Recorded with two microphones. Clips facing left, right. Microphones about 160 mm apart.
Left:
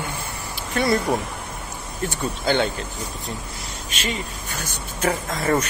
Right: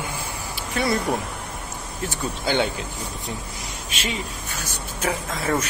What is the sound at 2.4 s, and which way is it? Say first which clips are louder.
Speech: left 2 dB; 10° right (ahead or behind).